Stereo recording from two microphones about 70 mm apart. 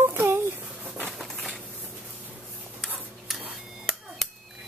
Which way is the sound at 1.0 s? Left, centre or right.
Centre.